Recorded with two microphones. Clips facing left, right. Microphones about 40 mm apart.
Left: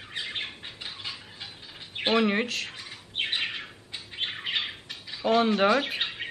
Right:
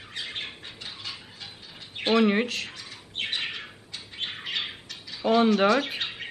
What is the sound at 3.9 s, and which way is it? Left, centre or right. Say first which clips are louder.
Bird: left 2 dB; centre.